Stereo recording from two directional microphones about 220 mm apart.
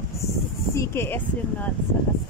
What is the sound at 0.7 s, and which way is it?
Speech, 10° left (ahead or behind).